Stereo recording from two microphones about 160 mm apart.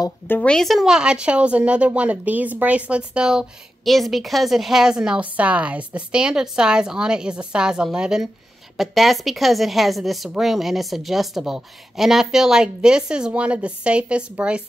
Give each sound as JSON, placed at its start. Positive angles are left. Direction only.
{"t": 0.3, "sound": "a woman's voice", "side_deg": 5}